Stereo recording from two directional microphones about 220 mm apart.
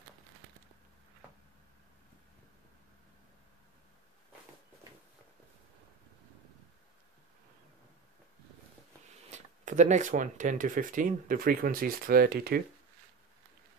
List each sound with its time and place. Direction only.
9.3 s speech: 35° right (ahead or behind)